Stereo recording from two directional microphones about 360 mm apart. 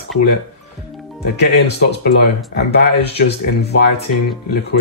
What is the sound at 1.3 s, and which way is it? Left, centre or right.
Speech, left.